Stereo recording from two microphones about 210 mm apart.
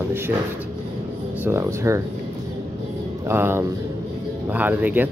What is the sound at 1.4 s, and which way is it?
Speech, 10° right (ahead or behind).